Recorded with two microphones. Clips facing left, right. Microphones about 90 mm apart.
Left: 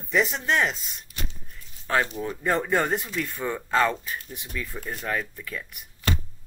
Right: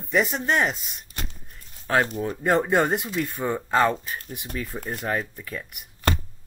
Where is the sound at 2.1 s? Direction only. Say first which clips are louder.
Right 3 dB; 40° right (ahead or behind).